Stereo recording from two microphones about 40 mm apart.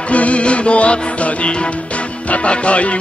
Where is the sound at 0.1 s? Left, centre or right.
Left.